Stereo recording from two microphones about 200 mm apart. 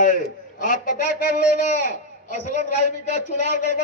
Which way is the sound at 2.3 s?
40° left (ahead or behind).